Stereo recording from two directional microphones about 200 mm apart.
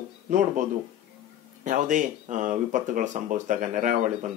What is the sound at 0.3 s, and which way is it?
Speech, 40° right (ahead or behind).